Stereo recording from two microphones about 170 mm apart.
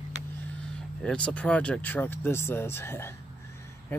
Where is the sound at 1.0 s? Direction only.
5° left (ahead or behind).